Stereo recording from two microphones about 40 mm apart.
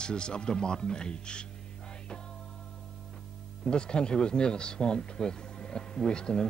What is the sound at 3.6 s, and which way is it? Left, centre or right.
Speech, left.